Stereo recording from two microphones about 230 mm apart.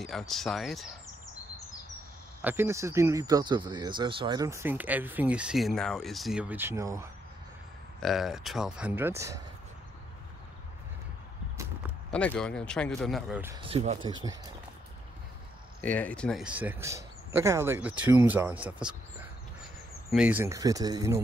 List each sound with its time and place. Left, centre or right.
0.0 s speech: centre
2.4 s speech: centre
8.0 s speech: centre
12.1 s speech: centre
13.6 s speech: right
15.8 s speech: centre
20.1 s speech: centre